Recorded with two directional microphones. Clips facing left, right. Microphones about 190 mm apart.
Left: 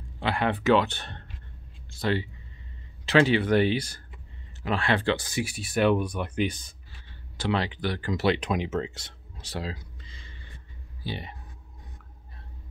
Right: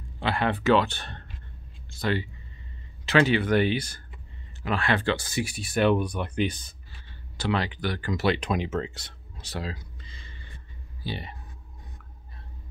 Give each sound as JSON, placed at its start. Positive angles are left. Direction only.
{"t": 0.2, "sound": "speech", "side_deg": 15}
{"t": 7.3, "sound": "speech", "side_deg": 25}